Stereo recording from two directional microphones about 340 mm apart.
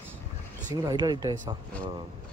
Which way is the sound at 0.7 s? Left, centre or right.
Centre.